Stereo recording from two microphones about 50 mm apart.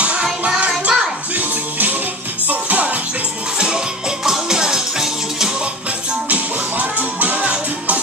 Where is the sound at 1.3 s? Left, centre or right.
Right.